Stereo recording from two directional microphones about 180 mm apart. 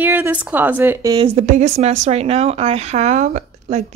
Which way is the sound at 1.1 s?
30° right (ahead or behind).